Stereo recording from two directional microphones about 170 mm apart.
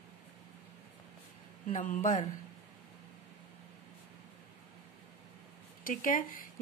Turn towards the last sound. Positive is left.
turn(degrees=55)  # may be behind; listen again after turning